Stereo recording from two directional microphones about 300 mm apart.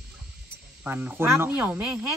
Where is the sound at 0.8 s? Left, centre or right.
Centre.